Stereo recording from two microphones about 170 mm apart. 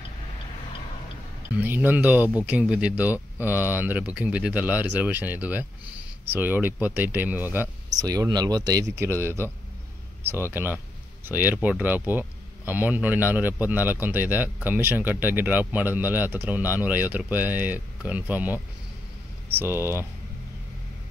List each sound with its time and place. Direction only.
1.5 s speech: 10° right (ahead or behind)
19.6 s speech: 15° right (ahead or behind)